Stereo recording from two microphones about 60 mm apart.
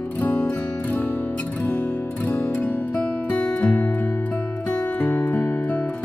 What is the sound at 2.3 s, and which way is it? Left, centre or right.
Music, left.